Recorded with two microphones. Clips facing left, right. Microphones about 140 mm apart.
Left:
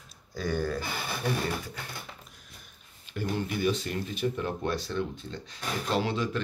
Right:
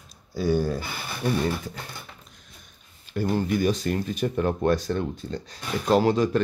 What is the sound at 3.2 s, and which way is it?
Speech, 40° right (ahead or behind).